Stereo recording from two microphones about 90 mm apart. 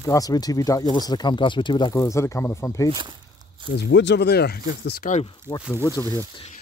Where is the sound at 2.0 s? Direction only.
35° left (ahead or behind).